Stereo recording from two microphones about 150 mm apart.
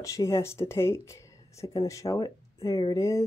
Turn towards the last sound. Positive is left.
turn(degrees=20)  # may be behind; listen again after turning